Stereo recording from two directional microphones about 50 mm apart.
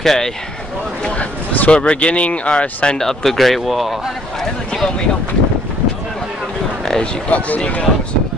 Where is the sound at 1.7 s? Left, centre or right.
Left.